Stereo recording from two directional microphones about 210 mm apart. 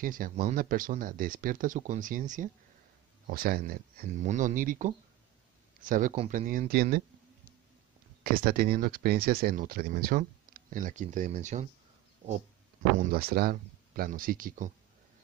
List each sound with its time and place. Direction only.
0.0 s speech: 40° right (ahead or behind)
8.2 s speech: 45° right (ahead or behind)
13.0 s speech: 45° right (ahead or behind)